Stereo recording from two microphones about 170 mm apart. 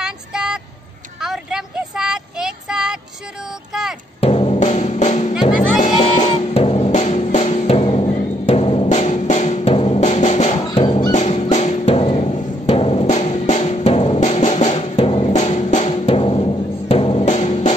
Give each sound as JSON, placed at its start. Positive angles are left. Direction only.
{"t": 0.0, "sound": "vehicle", "side_deg": -5}
{"t": 1.2, "sound": "child singing", "side_deg": -5}
{"t": 4.2, "sound": "music", "side_deg": 35}
{"t": 8.8, "sound": "drum", "side_deg": 45}
{"t": 10.6, "sound": "music", "side_deg": 25}
{"t": 11.1, "sound": "music", "side_deg": 45}